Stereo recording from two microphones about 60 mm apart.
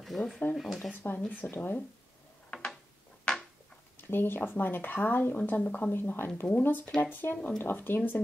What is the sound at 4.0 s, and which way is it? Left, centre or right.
Speech, left.